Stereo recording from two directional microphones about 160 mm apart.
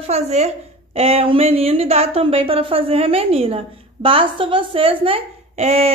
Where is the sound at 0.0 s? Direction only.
45° right (ahead or behind).